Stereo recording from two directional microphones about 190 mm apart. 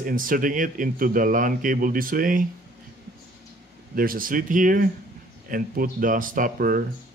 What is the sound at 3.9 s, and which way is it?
Speech, 50° right (ahead or behind).